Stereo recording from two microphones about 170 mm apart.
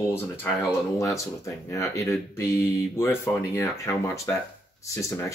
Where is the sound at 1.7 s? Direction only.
15° left (ahead or behind).